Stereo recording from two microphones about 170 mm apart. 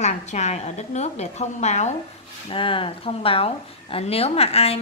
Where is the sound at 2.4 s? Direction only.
30° left (ahead or behind).